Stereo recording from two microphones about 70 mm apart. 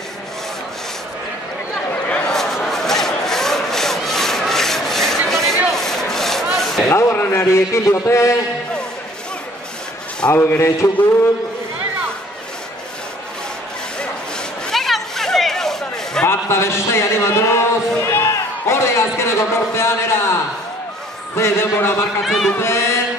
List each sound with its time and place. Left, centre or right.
1.9 s a sound: centre
2.3 s rub: centre
7.0 s a man's voice: left
10.3 s a man's voice: left
14.7 s a sound: centre
16.3 s speech: left
21.4 s a man's voice: left
22.2 s speech: centre
22.6 s a man's voice: left